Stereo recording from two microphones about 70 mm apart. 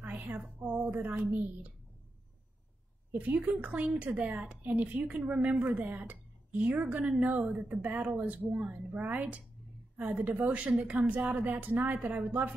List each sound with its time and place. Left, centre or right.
0.0 s a sound: right
0.7 s a woman's voice: right
3.1 s a woman's voice: right